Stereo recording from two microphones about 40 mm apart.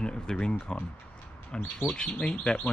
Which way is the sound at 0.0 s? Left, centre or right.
Left.